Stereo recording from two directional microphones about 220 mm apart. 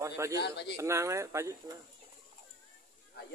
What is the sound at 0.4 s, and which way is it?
Speech, 50° left (ahead or behind).